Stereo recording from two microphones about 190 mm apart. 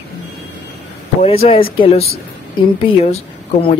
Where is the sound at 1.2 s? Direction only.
30° left (ahead or behind).